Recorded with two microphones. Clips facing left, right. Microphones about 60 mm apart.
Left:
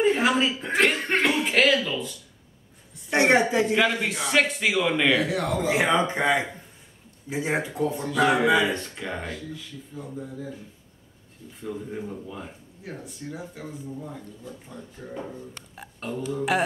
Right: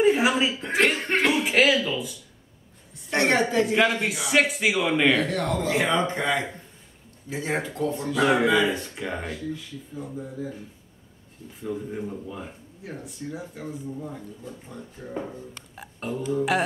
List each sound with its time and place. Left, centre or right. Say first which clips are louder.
0.0 s speech: right 1 dB; centre
3.1 s speech: left 2 dB; centre
3.6 s speech: right 1 dB; centre
7.9 s speech: right 1 dB; centre
11.9 s speech: right 1 dB; centre